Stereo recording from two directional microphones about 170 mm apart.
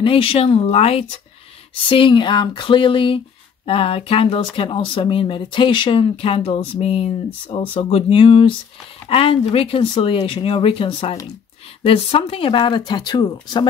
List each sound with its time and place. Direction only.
0.0 s speech: 30° left (ahead or behind)